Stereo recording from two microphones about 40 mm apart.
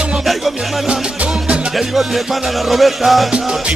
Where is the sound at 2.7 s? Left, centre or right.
Centre.